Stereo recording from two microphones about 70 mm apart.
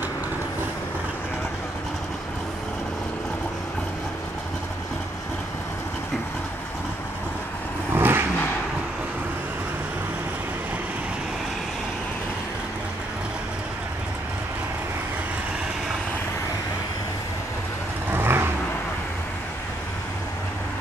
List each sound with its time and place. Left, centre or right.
7.9 s vehicle: right
18.1 s vehicle: right